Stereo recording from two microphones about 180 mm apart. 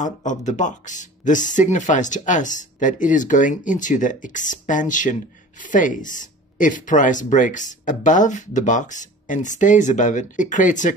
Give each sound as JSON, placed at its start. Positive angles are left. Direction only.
{"t": 0.0, "sound": "speech", "side_deg": 45}